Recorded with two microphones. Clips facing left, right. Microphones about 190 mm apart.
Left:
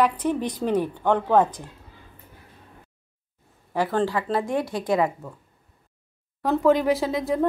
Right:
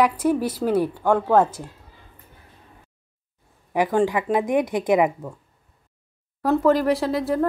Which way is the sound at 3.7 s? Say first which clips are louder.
Right 3 dB; 15° right (ahead or behind).